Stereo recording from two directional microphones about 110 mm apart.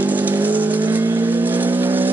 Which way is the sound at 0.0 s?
15° right (ahead or behind).